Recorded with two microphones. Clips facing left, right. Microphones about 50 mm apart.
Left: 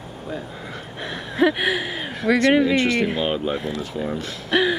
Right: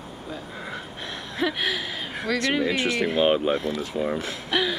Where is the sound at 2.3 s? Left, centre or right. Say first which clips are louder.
Left 8 dB; left.